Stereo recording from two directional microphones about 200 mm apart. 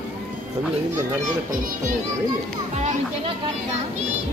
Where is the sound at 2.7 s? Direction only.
35° right (ahead or behind).